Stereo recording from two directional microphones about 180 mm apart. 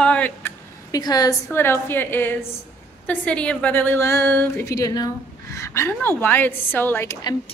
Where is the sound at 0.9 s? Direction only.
20° left (ahead or behind).